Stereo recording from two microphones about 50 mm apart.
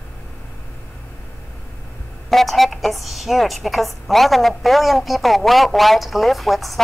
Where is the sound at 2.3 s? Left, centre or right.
Centre.